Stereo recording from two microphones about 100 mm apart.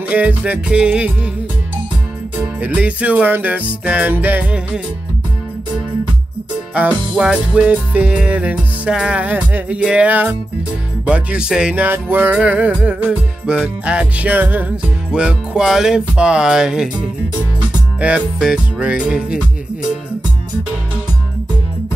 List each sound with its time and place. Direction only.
0.1 s music: 15° right (ahead or behind)
2.6 s music: 15° right (ahead or behind)
6.7 s music: 15° right (ahead or behind)